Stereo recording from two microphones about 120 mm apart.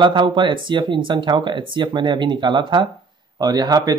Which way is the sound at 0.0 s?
40° right (ahead or behind).